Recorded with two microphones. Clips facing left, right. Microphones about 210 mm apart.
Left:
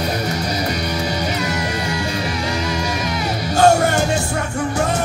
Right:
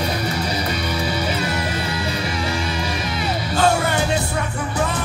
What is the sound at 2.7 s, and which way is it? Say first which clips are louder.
Music: left 3 dB; 45° left (ahead or behind).